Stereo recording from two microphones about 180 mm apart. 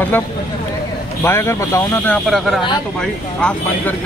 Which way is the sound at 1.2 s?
15° left (ahead or behind).